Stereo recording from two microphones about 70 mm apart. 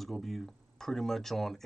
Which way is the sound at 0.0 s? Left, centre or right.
Centre.